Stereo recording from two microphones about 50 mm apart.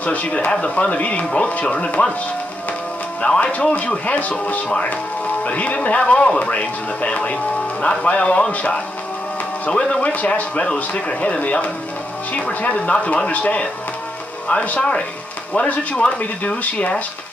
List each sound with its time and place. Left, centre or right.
0.0 s speech: left
3.2 s speech: left
14.8 s speech: left